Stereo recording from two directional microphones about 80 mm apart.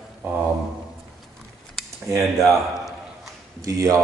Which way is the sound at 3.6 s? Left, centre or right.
Right.